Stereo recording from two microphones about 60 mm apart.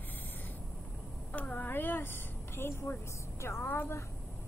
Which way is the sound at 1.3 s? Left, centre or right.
Left.